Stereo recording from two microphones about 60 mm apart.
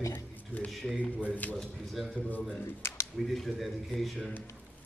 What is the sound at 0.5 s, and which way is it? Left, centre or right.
Speech, left.